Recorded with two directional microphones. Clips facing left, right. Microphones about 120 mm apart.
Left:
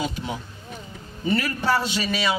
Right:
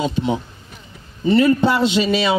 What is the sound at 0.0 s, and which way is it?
A man's voice, 25° right (ahead or behind).